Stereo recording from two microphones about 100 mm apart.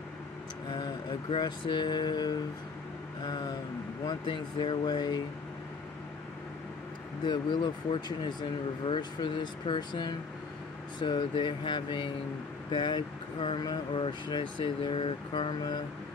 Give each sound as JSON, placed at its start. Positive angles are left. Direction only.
{"t": 0.7, "sound": "a sound", "side_deg": 45}
{"t": 1.3, "sound": "speech", "side_deg": 50}
{"t": 7.2, "sound": "speech", "side_deg": 50}